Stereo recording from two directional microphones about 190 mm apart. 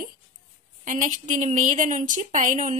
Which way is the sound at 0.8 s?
40° right (ahead or behind).